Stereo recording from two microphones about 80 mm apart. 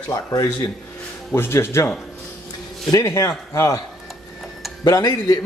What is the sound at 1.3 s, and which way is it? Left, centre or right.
Speech, left.